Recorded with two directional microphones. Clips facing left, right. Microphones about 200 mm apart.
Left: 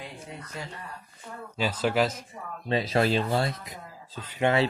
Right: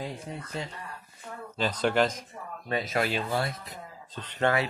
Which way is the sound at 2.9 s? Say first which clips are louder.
Left 5 dB; 35° left (ahead or behind).